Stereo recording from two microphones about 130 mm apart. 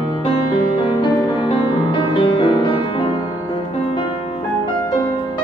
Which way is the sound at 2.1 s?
35° left (ahead or behind).